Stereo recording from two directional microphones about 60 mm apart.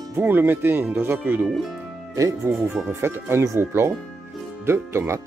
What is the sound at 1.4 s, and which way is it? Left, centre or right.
Speech, centre.